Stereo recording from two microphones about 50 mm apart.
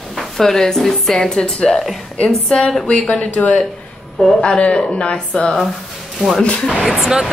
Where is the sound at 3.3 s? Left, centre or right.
Left.